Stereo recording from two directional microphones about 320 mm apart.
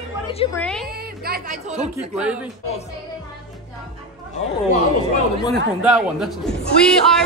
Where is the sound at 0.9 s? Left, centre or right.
Right.